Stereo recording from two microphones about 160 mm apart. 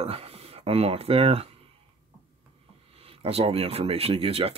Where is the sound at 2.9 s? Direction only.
40° right (ahead or behind).